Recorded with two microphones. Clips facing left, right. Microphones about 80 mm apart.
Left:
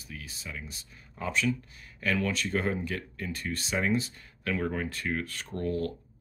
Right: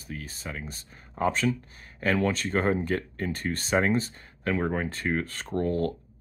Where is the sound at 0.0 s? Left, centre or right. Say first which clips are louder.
Right 5 dB; right.